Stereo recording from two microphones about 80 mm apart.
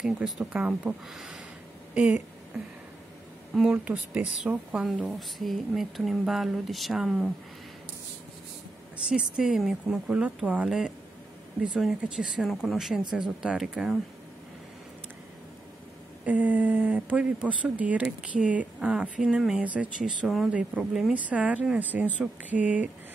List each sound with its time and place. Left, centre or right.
0.0 s speech: centre
0.5 s speech: centre
1.1 s speech: centre
2.0 s a sound: centre
3.7 s speech: centre
9.1 s speech: centre
16.3 s speech: centre